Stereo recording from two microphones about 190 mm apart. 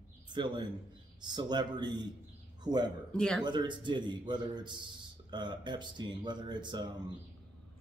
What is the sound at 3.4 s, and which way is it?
Speech, 25° right (ahead or behind).